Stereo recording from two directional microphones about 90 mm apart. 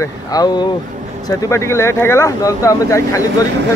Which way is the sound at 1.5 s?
30° left (ahead or behind).